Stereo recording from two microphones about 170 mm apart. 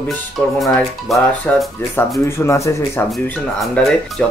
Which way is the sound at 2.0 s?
15° left (ahead or behind).